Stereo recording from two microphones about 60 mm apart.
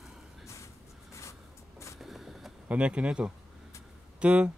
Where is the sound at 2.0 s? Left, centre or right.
Centre.